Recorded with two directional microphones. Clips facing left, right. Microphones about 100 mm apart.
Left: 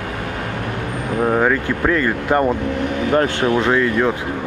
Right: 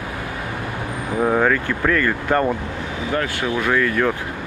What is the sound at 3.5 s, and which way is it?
Speech, 20° left (ahead or behind).